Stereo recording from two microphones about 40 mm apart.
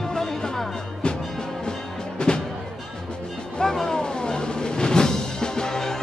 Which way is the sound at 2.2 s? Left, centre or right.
Left.